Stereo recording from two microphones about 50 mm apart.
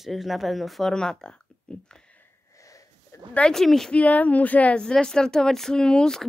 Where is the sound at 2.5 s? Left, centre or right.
Left.